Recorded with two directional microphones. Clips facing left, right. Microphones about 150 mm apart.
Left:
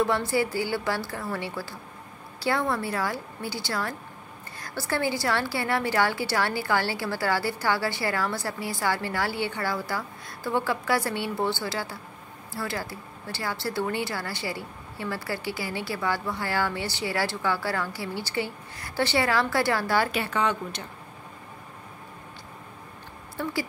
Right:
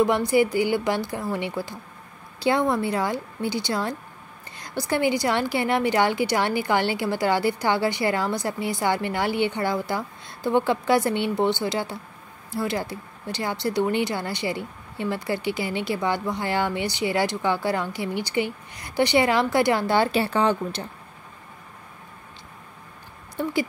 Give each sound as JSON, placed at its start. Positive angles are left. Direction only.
{"t": 0.0, "sound": "a woman's voice", "side_deg": -15}
{"t": 23.4, "sound": "speech", "side_deg": -20}